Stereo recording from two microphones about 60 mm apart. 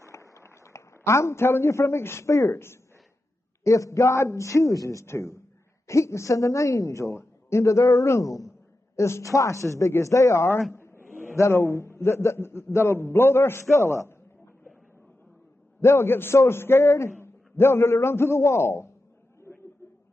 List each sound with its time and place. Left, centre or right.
0.0 s a man's voice: left
3.6 s a woman's voice: left
10.7 s a sound: left
11.3 s a man's voice: left
15.8 s a man's voice: left
19.5 s a sound: left